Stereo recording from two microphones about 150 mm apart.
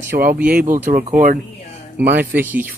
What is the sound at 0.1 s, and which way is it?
Speech, 70° right (ahead or behind).